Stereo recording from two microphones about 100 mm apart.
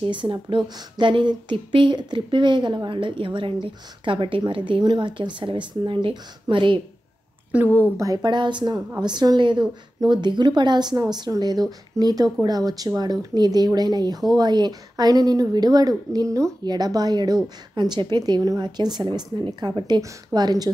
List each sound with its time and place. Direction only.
0.0 s speech: 55° right (ahead or behind)
7.5 s a woman's voice: 15° right (ahead or behind)
8.0 s speech: 40° right (ahead or behind)
16.6 s speech: 45° right (ahead or behind)